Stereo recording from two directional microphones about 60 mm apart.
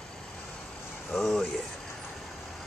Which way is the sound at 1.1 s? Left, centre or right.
Centre.